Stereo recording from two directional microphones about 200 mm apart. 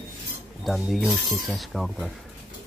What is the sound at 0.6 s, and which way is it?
Speech, centre (ahead or behind).